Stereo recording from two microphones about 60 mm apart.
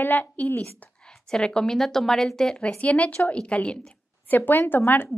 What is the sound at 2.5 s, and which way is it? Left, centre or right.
A woman's voice, left.